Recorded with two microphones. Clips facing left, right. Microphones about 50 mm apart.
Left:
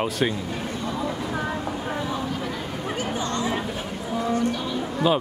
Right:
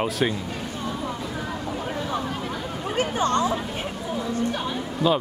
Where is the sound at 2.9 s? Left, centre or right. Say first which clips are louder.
Right 6 dB; right.